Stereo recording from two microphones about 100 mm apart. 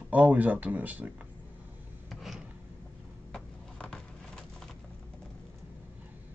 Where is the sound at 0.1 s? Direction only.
15° right (ahead or behind).